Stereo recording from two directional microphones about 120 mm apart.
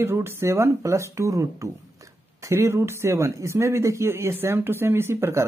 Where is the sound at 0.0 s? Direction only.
20° right (ahead or behind).